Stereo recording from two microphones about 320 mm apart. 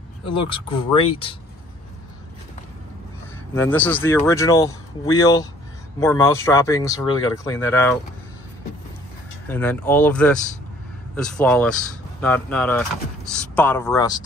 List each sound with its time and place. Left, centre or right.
0.5 s speech: centre
3.7 s speech: centre
9.5 s speech: centre